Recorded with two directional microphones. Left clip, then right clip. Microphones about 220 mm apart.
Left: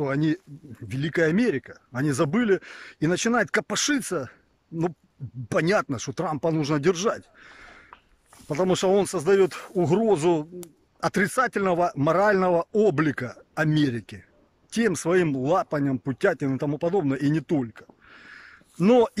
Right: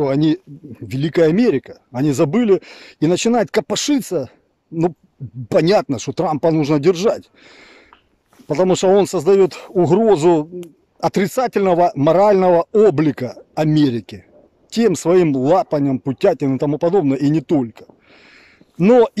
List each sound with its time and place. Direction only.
0.0 s speech: 20° right (ahead or behind)
5.5 s speech: 20° right (ahead or behind)